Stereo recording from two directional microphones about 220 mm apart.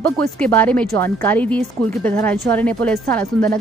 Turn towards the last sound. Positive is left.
turn(degrees=5)  # may be behind; listen again after turning